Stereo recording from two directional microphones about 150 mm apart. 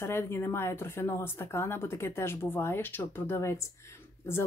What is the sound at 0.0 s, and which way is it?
A woman's voice, 15° left (ahead or behind).